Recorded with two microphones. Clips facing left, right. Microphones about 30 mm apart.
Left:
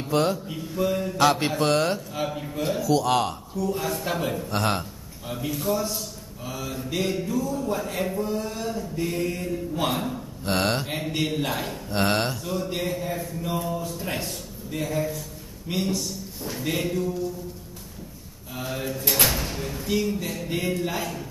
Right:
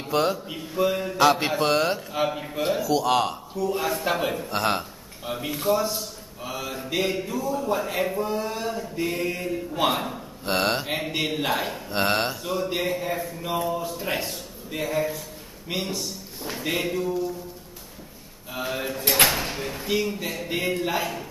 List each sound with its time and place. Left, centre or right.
0.1 s mantra: centre
0.5 s a man's voice: right
1.2 s a man's voice: centre
2.0 s a man's voice: right
2.9 s a man's voice: centre
4.5 s a man's voice: centre
5.2 s a man's voice: right
10.5 s a man's voice: centre
10.9 s a man's voice: centre
12.4 s a man's voice: centre
18.5 s a man's voice: centre